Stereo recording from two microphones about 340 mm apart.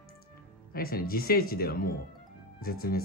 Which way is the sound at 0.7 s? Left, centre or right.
Left.